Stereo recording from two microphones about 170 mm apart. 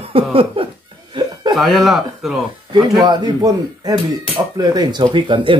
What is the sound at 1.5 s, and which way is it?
Speech, centre (ahead or behind).